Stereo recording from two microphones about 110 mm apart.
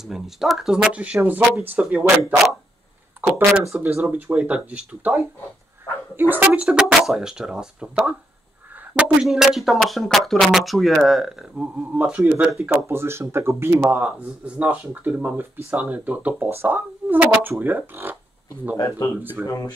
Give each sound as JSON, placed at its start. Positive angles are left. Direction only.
{"t": 0.0, "sound": "speech", "side_deg": -5}
{"t": 3.2, "sound": "speech", "side_deg": -20}
{"t": 6.1, "sound": "speech", "side_deg": -15}
{"t": 13.9, "sound": "speech", "side_deg": -10}
{"t": 18.8, "sound": "speech", "side_deg": 30}